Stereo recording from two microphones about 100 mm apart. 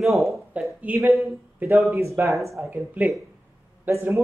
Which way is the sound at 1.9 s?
25° right (ahead or behind).